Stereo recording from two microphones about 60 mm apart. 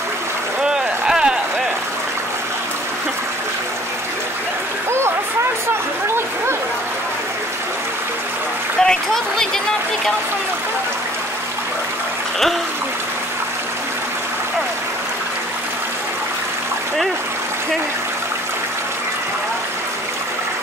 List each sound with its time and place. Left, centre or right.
0.6 s vehicle: centre
6.0 s a sound: right
8.8 s applause: centre